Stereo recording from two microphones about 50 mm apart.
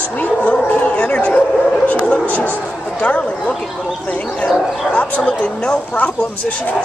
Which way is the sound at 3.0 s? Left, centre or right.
Left.